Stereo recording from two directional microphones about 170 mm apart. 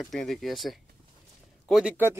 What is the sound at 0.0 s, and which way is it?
Speech, centre (ahead or behind).